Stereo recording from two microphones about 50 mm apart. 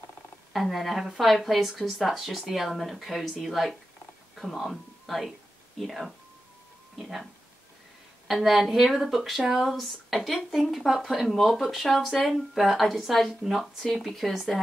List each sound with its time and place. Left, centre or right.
0.5 s speech: centre
8.3 s speech: centre
9.7 s speech: centre